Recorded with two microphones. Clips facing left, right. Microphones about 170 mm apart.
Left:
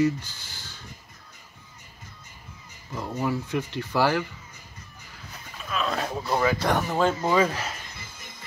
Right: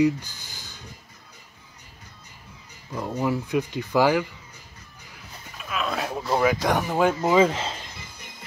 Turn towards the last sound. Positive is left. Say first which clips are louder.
# right 4 dB
turn(degrees=-25)  # may be behind; listen again after turning